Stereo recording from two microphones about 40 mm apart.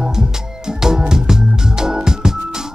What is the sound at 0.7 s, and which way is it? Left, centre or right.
Organ, centre.